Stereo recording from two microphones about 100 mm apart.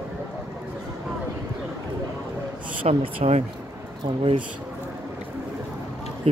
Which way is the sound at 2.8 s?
70° right (ahead or behind).